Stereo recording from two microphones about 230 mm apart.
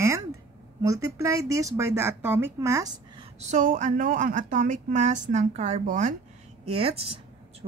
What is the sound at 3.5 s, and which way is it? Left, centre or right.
Speech, right.